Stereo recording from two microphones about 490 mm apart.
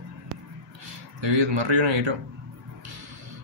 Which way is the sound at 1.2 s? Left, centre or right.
Right.